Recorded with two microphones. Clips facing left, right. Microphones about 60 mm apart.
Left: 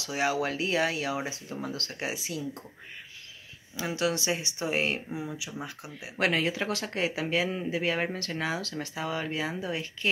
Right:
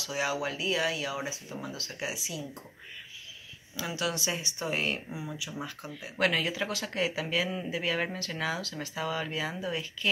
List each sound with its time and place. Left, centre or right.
0.0 s speech: left
3.7 s speech: left